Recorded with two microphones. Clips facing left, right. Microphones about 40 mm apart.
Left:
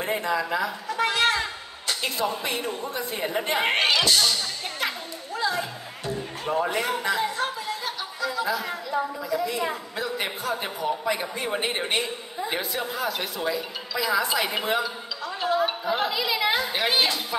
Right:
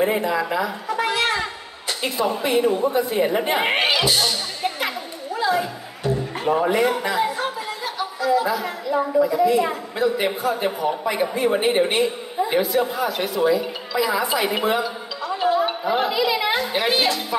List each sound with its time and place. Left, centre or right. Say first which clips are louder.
0.0 s speech: right 5 dB; centre
0.9 s a sound: right 1 dB; centre
2.9 s music: right 8 dB; centre
6.6 s chatter: right 5 dB; centre
9.5 s a woman's voice: right 8 dB; centre
15.2 s music: right 4 dB; centre
15.8 s speech: right 5 dB; centre